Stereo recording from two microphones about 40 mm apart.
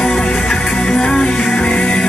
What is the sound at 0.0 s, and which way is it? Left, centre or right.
Music, centre.